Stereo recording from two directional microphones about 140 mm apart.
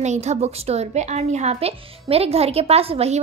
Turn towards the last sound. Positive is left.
turn(degrees=-45)  # may be behind; listen again after turning